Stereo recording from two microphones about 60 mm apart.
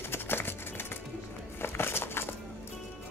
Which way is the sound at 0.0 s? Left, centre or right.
Left.